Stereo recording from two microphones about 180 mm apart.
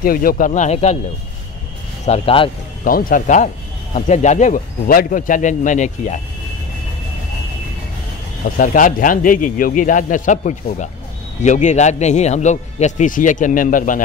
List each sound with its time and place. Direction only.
0.0 s speech: 55° left (ahead or behind)
0.5 s a man's voice: 35° left (ahead or behind)
2.0 s a man's voice: 35° left (ahead or behind)
2.8 s speech: 50° left (ahead or behind)
8.5 s a man's voice: 50° left (ahead or behind)